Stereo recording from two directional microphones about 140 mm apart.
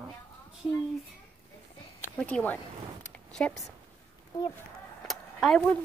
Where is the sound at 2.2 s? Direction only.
5° left (ahead or behind).